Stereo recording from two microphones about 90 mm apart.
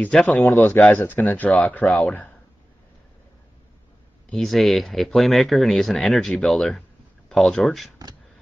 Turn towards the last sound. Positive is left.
turn(degrees=0)  # may be behind; listen again after turning